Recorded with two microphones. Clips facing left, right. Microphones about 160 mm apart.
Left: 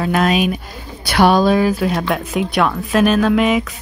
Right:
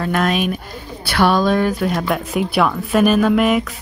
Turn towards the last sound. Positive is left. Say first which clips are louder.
# even
turn(degrees=0)  # may be behind; listen again after turning